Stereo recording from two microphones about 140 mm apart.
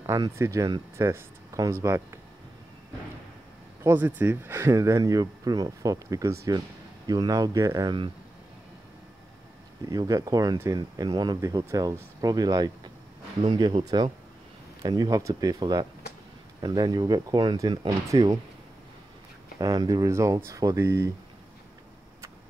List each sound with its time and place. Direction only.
0.0 s speech: 20° right (ahead or behind)
3.8 s speech: 15° right (ahead or behind); by 8.1 s 30° right (ahead or behind)
9.8 s speech: 25° right (ahead or behind)
19.6 s speech: 25° right (ahead or behind)